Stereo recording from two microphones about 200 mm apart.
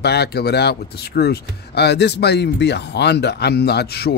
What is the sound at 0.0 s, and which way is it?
Speech, 55° left (ahead or behind).